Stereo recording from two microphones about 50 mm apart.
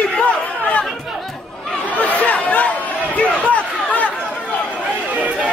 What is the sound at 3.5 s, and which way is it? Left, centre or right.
Chatter, left.